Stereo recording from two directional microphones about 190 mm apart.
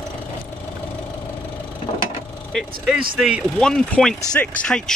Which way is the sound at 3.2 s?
5° right (ahead or behind).